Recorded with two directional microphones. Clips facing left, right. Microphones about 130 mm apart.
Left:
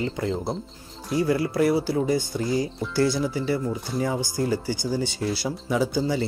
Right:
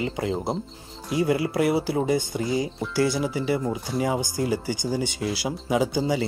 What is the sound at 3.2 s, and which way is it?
Speech, 15° right (ahead or behind).